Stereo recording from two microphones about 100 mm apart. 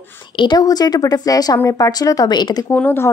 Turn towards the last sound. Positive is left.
turn(degrees=20)  # may be behind; listen again after turning